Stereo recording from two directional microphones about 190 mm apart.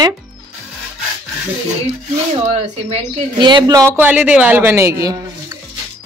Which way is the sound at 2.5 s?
30° right (ahead or behind).